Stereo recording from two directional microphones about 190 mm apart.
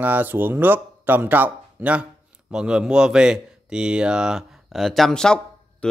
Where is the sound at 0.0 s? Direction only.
10° right (ahead or behind).